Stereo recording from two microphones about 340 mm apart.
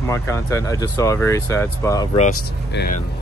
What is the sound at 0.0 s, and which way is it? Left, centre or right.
Speech, centre.